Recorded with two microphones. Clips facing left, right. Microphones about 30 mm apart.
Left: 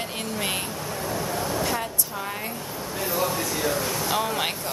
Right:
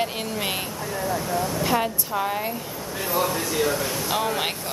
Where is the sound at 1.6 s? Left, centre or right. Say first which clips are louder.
Right 4 dB; right.